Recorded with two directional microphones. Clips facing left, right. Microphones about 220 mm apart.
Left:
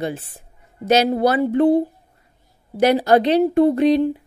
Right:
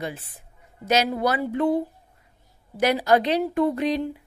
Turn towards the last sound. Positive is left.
turn(degrees=30)  # may be behind; listen again after turning